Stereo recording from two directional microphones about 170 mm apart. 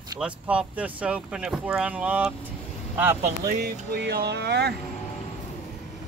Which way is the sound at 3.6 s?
70° right (ahead or behind).